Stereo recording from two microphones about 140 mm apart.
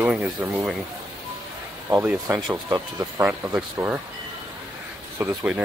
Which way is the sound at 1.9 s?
20° right (ahead or behind).